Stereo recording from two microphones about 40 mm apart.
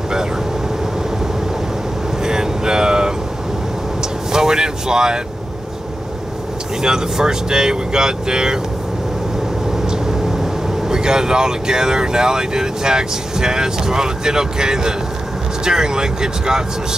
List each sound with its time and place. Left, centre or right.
2.2 s vehicle: centre
4.3 s vehicle: centre
6.8 s speech: centre
9.8 s speech: centre